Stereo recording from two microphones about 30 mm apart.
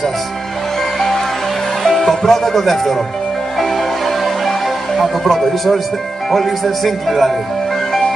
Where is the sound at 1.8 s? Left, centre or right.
Centre.